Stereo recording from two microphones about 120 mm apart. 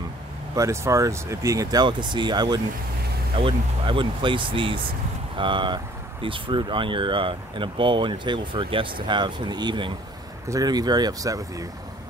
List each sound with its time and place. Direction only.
0.6 s speech: 25° right (ahead or behind)